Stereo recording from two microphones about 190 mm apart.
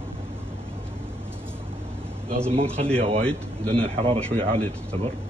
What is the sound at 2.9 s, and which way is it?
A man's voice, 30° right (ahead or behind).